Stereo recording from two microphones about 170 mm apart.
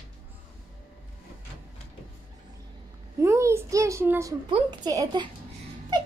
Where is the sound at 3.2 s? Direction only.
15° right (ahead or behind).